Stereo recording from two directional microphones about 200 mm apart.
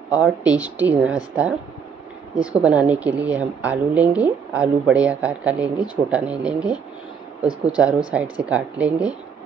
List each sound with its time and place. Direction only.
0.6 s a woman's voice: 10° right (ahead or behind)